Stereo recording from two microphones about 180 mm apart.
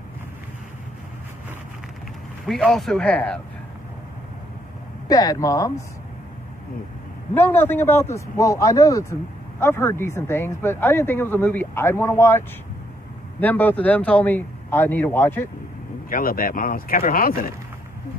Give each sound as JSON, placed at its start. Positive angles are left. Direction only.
{"t": 2.4, "sound": "speech", "side_deg": 0}
{"t": 5.0, "sound": "speech", "side_deg": 20}
{"t": 7.3, "sound": "speech", "side_deg": 10}
{"t": 16.1, "sound": "speech", "side_deg": 50}